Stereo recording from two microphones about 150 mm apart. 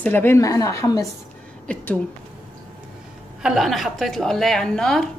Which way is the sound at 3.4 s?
Centre (ahead or behind).